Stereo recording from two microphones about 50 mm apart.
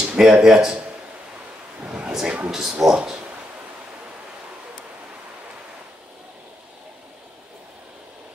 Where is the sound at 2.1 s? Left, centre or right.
Centre.